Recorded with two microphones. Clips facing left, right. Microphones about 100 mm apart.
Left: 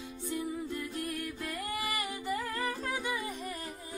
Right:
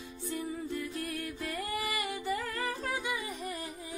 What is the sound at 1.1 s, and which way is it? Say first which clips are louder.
Music: right 1 dB; 25° right (ahead or behind).